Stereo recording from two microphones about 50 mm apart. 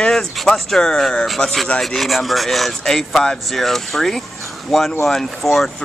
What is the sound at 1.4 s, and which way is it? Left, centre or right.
Rub, centre.